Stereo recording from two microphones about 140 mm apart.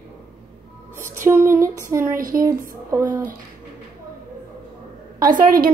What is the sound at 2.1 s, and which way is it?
Speech, 80° right.